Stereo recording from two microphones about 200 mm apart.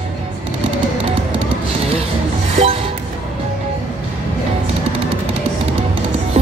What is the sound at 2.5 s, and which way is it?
Music, 30° right (ahead or behind).